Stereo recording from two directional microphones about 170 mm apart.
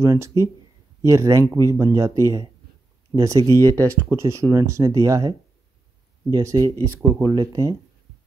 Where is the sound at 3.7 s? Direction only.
10° left (ahead or behind).